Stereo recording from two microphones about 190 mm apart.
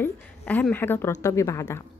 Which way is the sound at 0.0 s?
10° left (ahead or behind).